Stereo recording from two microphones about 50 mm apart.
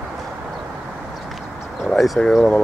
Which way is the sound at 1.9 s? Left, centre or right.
Centre.